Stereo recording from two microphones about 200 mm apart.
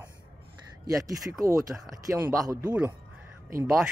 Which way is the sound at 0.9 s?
15° right (ahead or behind).